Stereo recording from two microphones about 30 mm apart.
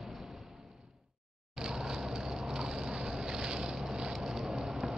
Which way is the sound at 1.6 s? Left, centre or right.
Centre.